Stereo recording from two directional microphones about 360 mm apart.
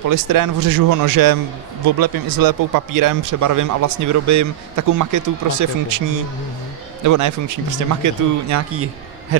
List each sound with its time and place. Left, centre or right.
0.1 s speech: right